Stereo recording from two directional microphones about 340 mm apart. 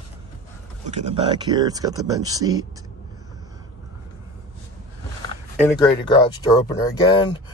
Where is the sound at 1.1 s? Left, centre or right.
Centre.